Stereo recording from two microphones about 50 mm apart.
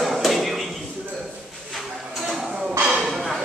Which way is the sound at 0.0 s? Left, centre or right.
Centre.